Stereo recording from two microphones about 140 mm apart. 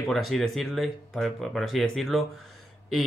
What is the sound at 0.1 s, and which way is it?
Speech, centre (ahead or behind).